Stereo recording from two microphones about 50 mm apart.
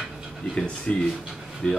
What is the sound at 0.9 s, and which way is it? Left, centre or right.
Speech, centre.